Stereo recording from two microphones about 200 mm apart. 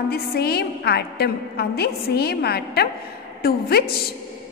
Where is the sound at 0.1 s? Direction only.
50° left (ahead or behind).